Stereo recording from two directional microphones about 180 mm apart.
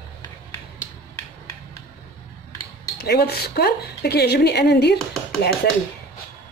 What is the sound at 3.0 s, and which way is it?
Speech, 65° left (ahead or behind).